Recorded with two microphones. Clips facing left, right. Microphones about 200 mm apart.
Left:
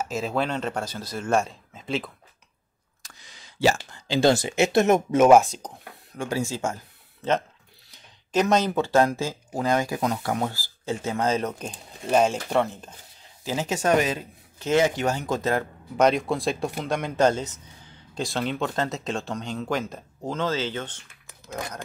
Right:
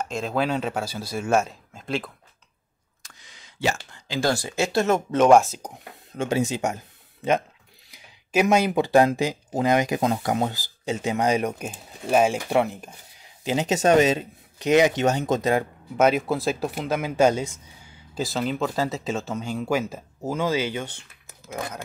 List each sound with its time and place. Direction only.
0.0 s speech: 5° left (ahead or behind)
3.0 s clicking: 35° left (ahead or behind)
4.2 s speech: 20° left (ahead or behind); by 5.7 s centre (ahead or behind)
6.1 s speech: 20° right (ahead or behind)
16.0 s speech: 5° right (ahead or behind)